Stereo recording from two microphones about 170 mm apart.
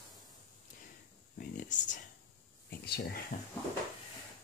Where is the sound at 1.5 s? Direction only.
45° left (ahead or behind).